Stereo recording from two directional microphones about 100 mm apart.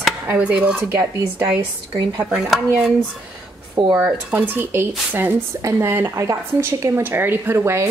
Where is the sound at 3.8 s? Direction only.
40° right (ahead or behind).